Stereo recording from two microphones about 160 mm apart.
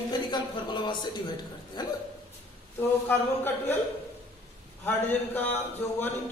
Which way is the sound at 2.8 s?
15° left (ahead or behind).